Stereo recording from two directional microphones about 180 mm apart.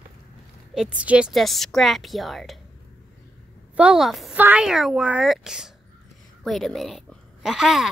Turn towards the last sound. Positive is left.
turn(degrees=0)  # may be behind; listen again after turning